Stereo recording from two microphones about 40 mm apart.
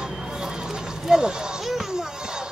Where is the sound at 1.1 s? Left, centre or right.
Centre.